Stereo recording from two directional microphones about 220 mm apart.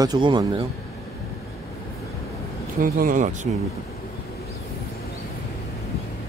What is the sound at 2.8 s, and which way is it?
Speech, 40° right (ahead or behind).